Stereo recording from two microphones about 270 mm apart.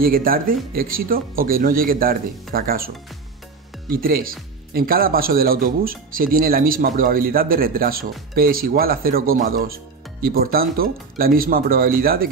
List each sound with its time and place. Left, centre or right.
0.0 s speech: right
3.9 s speech: right